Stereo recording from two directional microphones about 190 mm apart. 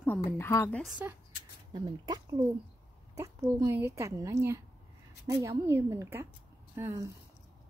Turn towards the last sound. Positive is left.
turn(degrees=-15)  # may be behind; listen again after turning